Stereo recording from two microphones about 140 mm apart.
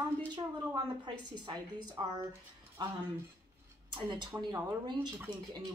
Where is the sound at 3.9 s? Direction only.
30° right (ahead or behind).